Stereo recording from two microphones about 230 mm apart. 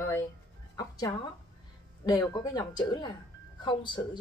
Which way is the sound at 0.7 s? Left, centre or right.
Centre.